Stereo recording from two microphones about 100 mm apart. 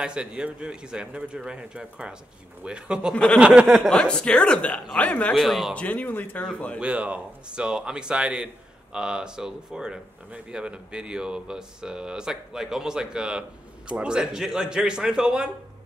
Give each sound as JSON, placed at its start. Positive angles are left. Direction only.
{"t": 0.0, "sound": "speech", "side_deg": -10}
{"t": 3.9, "sound": "speech", "side_deg": 10}
{"t": 5.4, "sound": "speech", "side_deg": 0}
{"t": 5.8, "sound": "speech", "side_deg": 15}
{"t": 6.8, "sound": "speech", "side_deg": -10}